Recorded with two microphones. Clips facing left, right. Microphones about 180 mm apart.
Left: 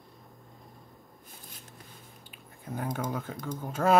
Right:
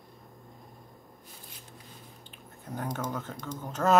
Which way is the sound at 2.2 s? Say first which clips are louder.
Left 1 dB; 10° left (ahead or behind).